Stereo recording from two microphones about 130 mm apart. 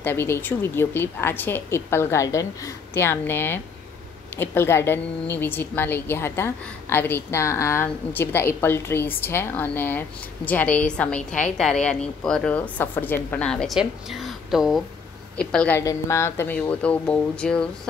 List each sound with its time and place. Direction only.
0.0 s a woman's voice: 15° left (ahead or behind); by 14.8 s centre (ahead or behind)
15.3 s a woman's voice: 10° left (ahead or behind)
15.8 s a woman's voice: 25° left (ahead or behind); by 17.6 s 5° left (ahead or behind)